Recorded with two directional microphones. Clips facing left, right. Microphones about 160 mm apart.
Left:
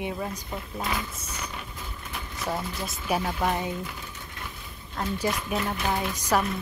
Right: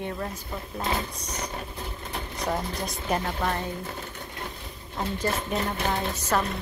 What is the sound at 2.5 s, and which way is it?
Speech, 5° left (ahead or behind).